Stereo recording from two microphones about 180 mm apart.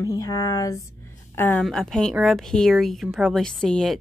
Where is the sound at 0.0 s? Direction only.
20° left (ahead or behind).